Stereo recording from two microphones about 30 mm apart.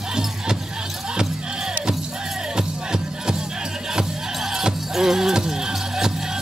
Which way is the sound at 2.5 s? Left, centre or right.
Right.